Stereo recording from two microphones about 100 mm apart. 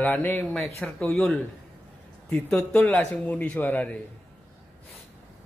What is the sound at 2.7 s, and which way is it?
Speech, 15° left (ahead or behind).